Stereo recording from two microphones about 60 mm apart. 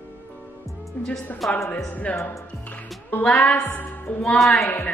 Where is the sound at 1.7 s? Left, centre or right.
Left.